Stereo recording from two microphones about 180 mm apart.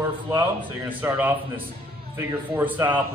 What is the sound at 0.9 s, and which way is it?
A man's voice, 10° right (ahead or behind).